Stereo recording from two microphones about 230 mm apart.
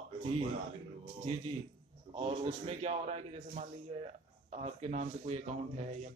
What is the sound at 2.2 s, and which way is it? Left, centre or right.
A man's voice, right.